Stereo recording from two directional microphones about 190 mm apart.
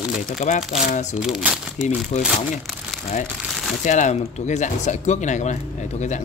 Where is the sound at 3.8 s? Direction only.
40° left (ahead or behind).